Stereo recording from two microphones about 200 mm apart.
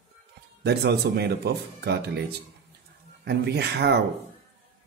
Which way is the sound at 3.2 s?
55° right (ahead or behind).